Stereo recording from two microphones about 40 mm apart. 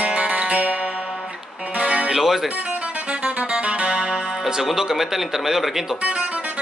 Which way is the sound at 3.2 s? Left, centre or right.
Right.